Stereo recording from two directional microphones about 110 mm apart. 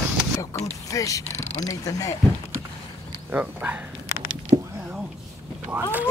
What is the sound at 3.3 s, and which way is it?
Speech, 10° right (ahead or behind).